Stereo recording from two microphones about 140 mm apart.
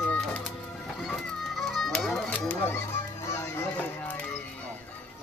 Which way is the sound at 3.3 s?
20° left (ahead or behind).